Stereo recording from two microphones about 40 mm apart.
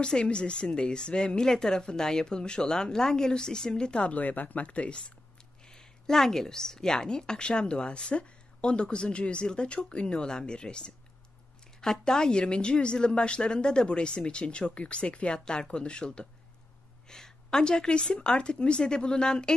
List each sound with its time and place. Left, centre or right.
0.0 s a woman's voice: left
4.2 s speech: left
5.7 s a woman's voice: centre